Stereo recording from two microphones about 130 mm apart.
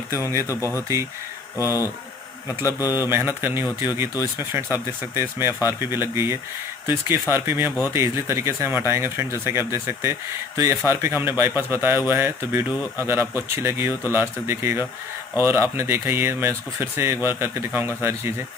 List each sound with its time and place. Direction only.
0.2 s speech: 20° right (ahead or behind)
2.9 s speech: 15° right (ahead or behind)
5.1 s speech: 20° right (ahead or behind)
5.5 s speech: 25° left (ahead or behind)
5.8 s speech: 20° right (ahead or behind)